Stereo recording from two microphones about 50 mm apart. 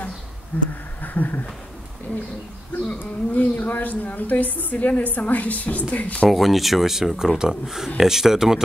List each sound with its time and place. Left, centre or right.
0.5 s a woman's voice: left
3.0 s a woman's voice: left
6.2 s speech: centre